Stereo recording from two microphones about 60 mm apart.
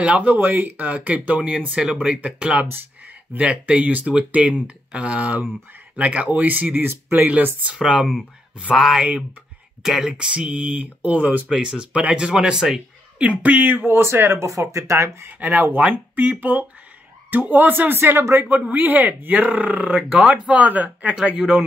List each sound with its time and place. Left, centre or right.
0.0 s speech: right
7.7 s speech: centre
12.5 s speech: centre
13.2 s speech: right
15.2 s speech: right
18.5 s speech: right; by 20.5 s centre
20.5 s speech: right